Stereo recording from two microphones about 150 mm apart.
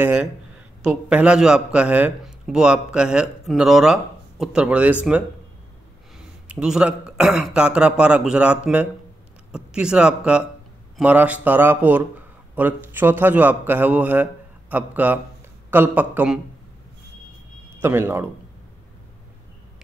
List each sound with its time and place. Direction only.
0.0 s a man's voice: 10° right (ahead or behind)
6.1 s a man's voice: 5° right (ahead or behind)
17.8 s a man's voice: 15° right (ahead or behind)